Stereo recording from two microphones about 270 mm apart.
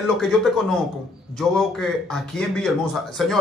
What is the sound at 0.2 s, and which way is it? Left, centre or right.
Speech, centre.